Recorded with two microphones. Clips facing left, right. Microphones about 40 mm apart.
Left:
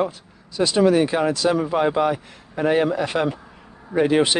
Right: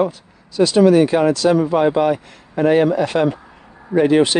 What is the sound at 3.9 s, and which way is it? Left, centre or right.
Speech, right.